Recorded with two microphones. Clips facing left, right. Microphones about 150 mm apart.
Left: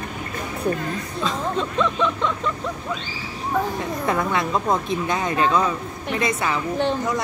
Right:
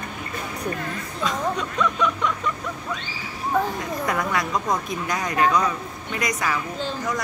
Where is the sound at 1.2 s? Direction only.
25° left (ahead or behind).